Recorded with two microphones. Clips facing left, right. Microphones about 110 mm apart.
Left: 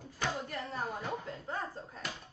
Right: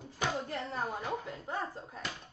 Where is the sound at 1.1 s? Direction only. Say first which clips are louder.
Right 1 dB; 15° right (ahead or behind).